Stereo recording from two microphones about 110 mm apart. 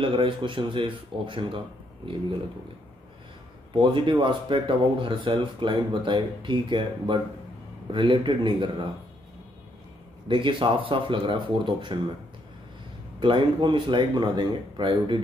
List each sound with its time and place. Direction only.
0.0 s speech: 50° right (ahead or behind)
3.7 s speech: 45° right (ahead or behind)
10.2 s speech: 50° right (ahead or behind)
13.2 s speech: 45° right (ahead or behind)